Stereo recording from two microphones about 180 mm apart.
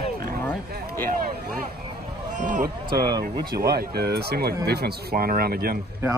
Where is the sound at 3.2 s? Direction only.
60° right (ahead or behind).